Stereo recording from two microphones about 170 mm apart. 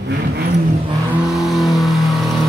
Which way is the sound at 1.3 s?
Centre (ahead or behind).